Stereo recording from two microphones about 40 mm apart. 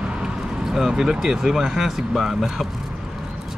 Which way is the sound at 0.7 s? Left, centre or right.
Centre.